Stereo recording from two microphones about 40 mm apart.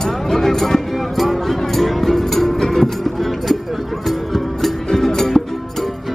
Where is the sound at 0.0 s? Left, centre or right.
Centre.